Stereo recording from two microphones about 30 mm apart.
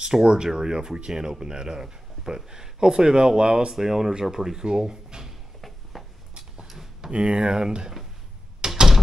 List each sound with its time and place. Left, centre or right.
0.0 s speech: right
3.7 s speech: centre
5.9 s a sound: centre
6.3 s a sound: right
7.1 s speech: right
8.5 s door: right